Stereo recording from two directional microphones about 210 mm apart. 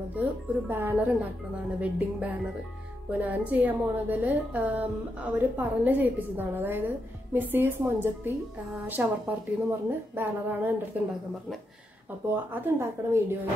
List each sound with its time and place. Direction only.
0.1 s a woman's voice: 10° right (ahead or behind)
12.4 s a woman's voice: 10° right (ahead or behind)